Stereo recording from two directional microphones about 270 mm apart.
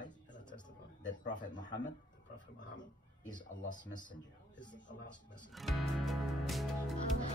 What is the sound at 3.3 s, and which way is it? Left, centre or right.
Speech, left.